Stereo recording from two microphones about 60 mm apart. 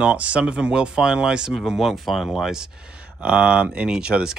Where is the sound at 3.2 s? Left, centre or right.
Right.